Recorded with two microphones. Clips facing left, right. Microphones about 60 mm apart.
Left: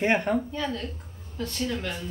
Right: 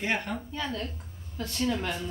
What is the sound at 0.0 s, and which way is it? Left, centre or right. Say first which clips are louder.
Speech: left 7 dB; left.